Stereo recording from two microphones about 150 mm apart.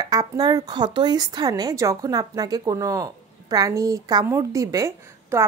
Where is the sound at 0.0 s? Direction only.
25° right (ahead or behind).